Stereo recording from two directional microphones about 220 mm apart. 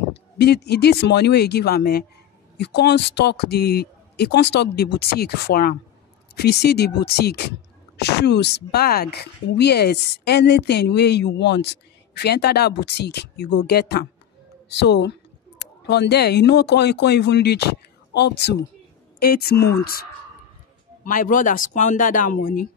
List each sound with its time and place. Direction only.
0.1 s speech: 50° left (ahead or behind)